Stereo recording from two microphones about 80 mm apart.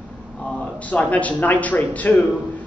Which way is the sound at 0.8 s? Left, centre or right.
Centre.